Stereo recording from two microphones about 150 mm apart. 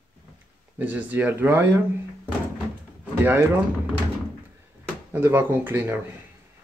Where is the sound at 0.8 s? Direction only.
10° right (ahead or behind).